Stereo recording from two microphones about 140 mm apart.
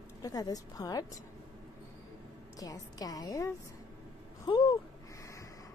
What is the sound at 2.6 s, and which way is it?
A woman's voice, 25° left (ahead or behind).